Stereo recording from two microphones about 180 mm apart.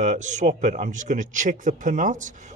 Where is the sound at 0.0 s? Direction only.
40° right (ahead or behind).